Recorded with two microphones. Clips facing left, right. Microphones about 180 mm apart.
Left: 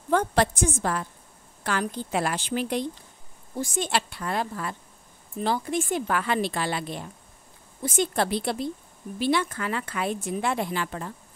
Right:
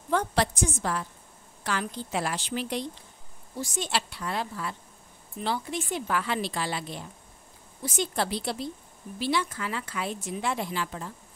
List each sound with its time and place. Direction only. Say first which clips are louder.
0.1 s a woman's voice: left 4 dB; 50° left (ahead or behind)